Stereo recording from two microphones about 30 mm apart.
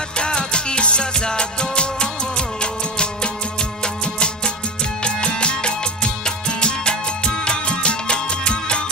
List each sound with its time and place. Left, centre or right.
0.2 s music: left